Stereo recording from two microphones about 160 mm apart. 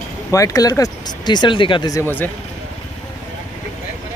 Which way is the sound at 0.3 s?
20° left (ahead or behind).